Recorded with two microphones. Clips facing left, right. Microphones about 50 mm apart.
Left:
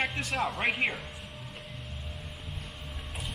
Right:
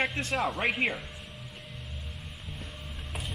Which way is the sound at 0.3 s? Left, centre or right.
Centre.